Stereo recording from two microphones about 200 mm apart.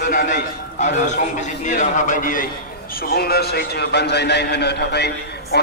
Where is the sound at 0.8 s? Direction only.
35° left (ahead or behind).